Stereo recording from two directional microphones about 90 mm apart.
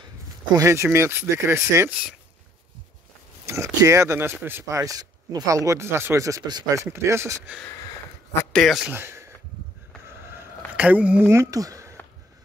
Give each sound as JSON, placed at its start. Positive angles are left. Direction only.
{"t": 0.6, "sound": "speech", "side_deg": -30}
{"t": 3.4, "sound": "speech", "side_deg": -35}
{"t": 4.6, "sound": "speech", "side_deg": -35}
{"t": 8.5, "sound": "a man's voice", "side_deg": 0}
{"t": 8.9, "sound": "speech", "side_deg": -25}
{"t": 10.8, "sound": "speech", "side_deg": -15}
{"t": 11.2, "sound": "speech", "side_deg": -35}